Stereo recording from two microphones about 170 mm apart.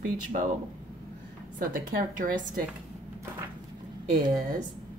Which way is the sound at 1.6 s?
55° right (ahead or behind).